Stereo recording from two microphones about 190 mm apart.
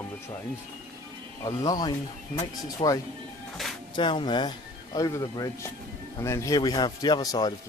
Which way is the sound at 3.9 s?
25° left (ahead or behind).